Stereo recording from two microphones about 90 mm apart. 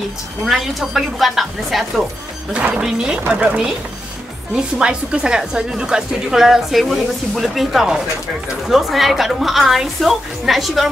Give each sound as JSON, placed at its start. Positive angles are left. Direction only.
{"t": 0.5, "sound": "a woman's voice", "side_deg": 0}